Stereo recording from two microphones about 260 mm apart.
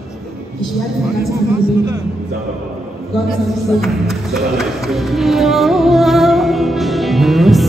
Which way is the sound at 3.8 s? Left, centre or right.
Centre.